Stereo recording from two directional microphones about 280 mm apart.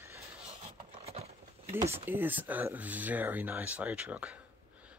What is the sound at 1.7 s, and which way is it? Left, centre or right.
Speech, centre.